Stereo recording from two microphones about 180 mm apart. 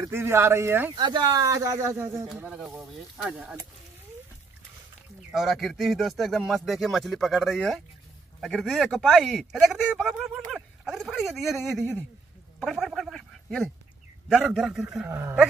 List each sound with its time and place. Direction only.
0.0 s speech: 15° right (ahead or behind)
0.9 s speech: 25° right (ahead or behind)
2.2 s speech: 5° right (ahead or behind)
5.3 s speech: centre (ahead or behind)
10.5 s a sound: centre (ahead or behind)
12.5 s speech: centre (ahead or behind)
15.0 s speech: 15° right (ahead or behind)